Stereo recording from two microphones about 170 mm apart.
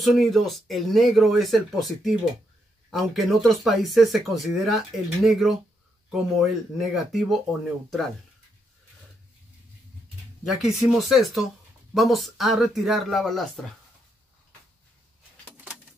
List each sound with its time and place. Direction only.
0.0 s speech: centre (ahead or behind)
10.4 s speech: centre (ahead or behind)
15.5 s bird: 10° right (ahead or behind)